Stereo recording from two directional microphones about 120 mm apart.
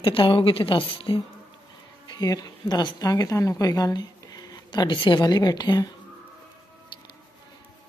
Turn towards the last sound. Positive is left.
turn(degrees=35)  # may be behind; listen again after turning